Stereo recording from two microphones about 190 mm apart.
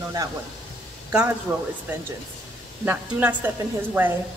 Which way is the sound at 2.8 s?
10° right (ahead or behind).